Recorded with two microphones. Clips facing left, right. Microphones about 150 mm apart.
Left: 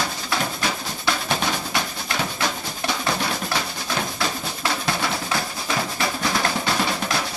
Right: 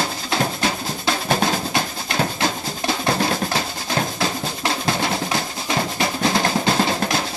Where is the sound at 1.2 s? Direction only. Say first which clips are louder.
Right 8 dB; 40° right (ahead or behind).